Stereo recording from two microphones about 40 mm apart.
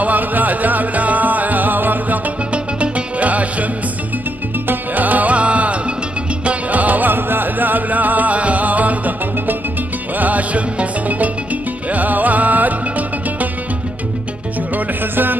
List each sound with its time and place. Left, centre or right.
0.0 s music: right
2.5 s music: right
4.6 s music: right
7.1 s music: right